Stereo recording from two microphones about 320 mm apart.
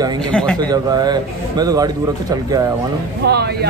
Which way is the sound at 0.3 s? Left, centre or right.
Centre.